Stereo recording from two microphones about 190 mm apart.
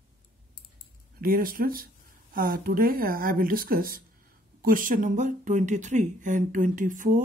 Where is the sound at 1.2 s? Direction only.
50° right (ahead or behind).